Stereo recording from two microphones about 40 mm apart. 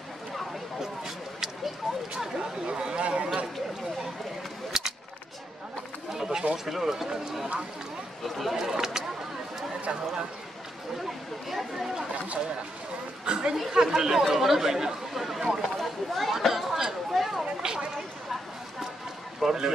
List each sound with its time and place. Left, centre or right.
0.7 s a sound: centre; by 3.3 s right
4.7 s a sound: centre
6.1 s a sound: centre
6.5 s speech: centre
8.5 s speech: centre
11.4 s speech: centre
13.2 s speech: right; by 17.5 s centre
17.6 s speech: centre
19.4 s speech: centre